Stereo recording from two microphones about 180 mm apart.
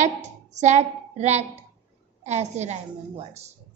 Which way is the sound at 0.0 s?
40° right (ahead or behind).